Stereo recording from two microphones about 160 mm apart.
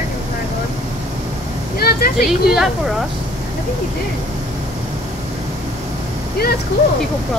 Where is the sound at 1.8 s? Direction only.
75° left (ahead or behind).